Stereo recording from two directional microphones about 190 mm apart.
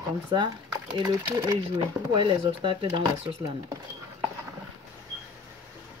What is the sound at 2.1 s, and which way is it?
Speech, 25° right (ahead or behind).